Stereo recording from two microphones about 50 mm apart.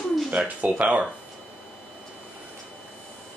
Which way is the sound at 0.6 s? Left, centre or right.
Right.